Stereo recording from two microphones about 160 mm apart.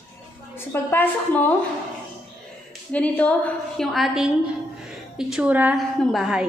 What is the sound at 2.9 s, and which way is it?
A woman's voice, 10° left (ahead or behind).